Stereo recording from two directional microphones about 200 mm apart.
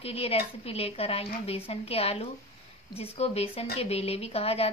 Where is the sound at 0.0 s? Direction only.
30° left (ahead or behind).